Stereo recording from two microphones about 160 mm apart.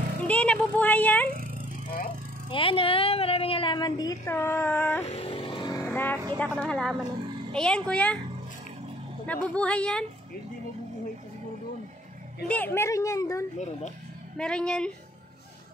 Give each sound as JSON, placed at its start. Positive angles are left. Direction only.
{"t": 0.3, "sound": "speech", "side_deg": 10}
{"t": 2.5, "sound": "a woman's voice", "side_deg": 35}
{"t": 5.0, "sound": "vehicle", "side_deg": 40}
{"t": 5.9, "sound": "music", "side_deg": 10}
{"t": 6.3, "sound": "speech", "side_deg": 10}
{"t": 9.2, "sound": "speech", "side_deg": 10}
{"t": 12.4, "sound": "a woman's voice", "side_deg": 10}
{"t": 14.3, "sound": "speech", "side_deg": 5}